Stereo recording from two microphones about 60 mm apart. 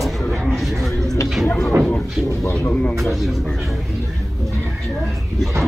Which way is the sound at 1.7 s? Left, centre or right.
Right.